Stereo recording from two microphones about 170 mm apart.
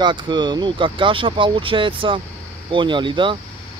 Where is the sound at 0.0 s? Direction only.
25° right (ahead or behind).